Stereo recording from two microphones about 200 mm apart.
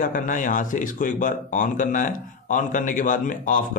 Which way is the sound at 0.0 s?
40° left (ahead or behind).